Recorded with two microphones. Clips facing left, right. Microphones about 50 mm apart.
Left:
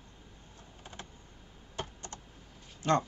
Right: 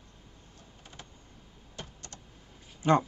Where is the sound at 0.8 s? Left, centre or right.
Left.